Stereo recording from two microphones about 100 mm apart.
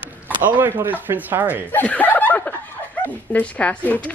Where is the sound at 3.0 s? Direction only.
15° left (ahead or behind).